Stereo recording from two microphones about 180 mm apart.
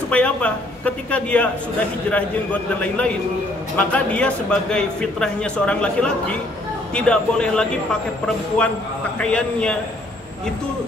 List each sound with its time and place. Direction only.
0.1 s a man's voice: 5° left (ahead or behind)
9.2 s speech: 5° left (ahead or behind)